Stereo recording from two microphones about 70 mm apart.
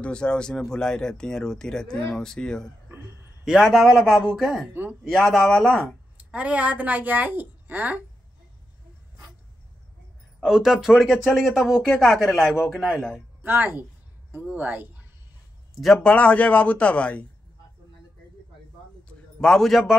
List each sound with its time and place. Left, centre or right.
0.0 s speech: centre
3.4 s speech: centre
6.1 s a woman's voice: centre
10.4 s speech: centre
13.4 s a woman's voice: right
15.7 s speech: centre
16.0 s speech: centre
19.0 s a sound: centre